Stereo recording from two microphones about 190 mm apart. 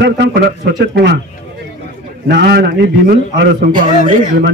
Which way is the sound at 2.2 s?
60° right (ahead or behind).